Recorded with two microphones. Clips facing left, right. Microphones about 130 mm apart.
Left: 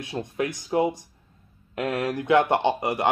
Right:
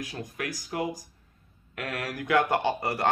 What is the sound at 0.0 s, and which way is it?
Speech, 25° left (ahead or behind).